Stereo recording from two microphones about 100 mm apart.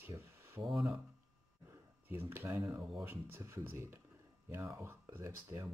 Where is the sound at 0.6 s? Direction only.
Centre (ahead or behind).